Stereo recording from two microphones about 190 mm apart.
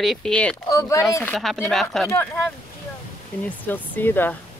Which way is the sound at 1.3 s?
Centre (ahead or behind).